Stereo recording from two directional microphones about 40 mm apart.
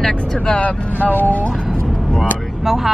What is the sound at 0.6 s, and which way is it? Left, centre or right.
Speech, left.